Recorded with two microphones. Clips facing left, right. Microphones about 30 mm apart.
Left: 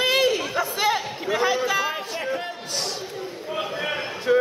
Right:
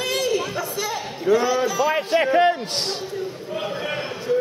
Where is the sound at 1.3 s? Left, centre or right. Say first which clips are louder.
Right 3 dB; left.